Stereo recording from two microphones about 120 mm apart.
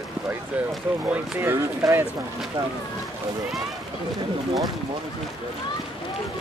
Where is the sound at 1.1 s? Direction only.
20° right (ahead or behind).